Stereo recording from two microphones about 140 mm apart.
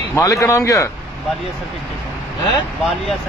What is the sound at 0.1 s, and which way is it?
Speech, 20° left (ahead or behind).